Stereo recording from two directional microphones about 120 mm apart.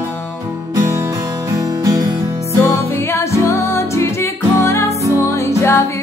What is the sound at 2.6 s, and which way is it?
Music, 20° left (ahead or behind).